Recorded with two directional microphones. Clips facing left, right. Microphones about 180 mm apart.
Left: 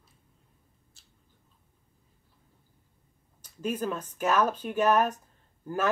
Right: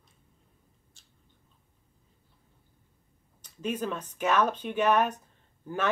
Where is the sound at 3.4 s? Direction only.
10° left (ahead or behind).